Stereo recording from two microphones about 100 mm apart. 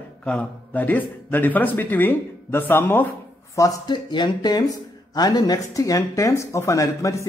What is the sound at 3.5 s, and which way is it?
Speech, 35° left (ahead or behind).